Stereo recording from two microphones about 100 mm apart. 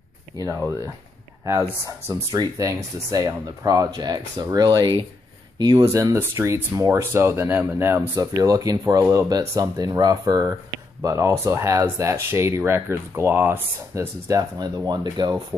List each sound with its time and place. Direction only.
2.3 s speech: 35° right (ahead or behind)
8.2 s speech: 40° right (ahead or behind); by 13.6 s 20° right (ahead or behind)
13.9 s speech: 35° right (ahead or behind)